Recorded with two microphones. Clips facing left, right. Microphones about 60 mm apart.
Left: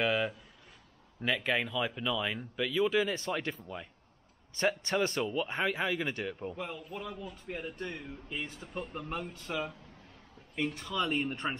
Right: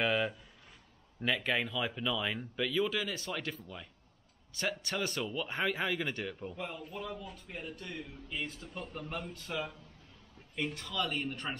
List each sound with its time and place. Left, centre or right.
0.0 s speech: centre
7.4 s speech: left
9.5 s speech: centre
10.8 s speech: centre